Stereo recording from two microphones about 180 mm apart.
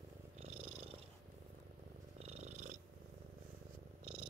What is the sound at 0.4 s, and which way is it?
Purr, 30° right (ahead or behind).